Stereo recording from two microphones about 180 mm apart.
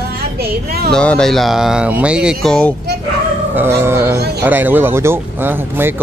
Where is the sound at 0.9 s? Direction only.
5° left (ahead or behind).